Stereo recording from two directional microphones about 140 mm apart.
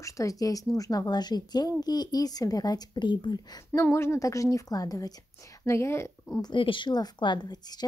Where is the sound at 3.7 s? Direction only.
20° left (ahead or behind).